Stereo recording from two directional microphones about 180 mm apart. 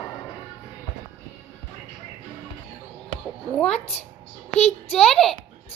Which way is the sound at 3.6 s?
5° left (ahead or behind).